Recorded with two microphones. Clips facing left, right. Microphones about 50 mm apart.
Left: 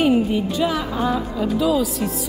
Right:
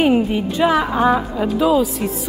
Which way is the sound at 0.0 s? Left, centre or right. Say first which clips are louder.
Right 2 dB; right.